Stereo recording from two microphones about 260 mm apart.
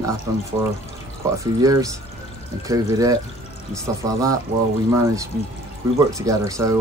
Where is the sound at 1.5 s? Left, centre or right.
Centre.